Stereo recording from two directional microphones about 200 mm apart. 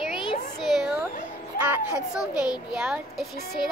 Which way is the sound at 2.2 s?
20° left (ahead or behind).